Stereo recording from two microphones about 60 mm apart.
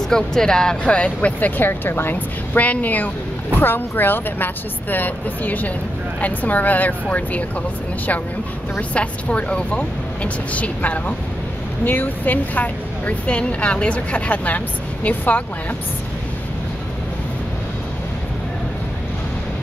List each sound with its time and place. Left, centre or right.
0.1 s speech: centre
1.6 s speech: left
8.9 s speech: centre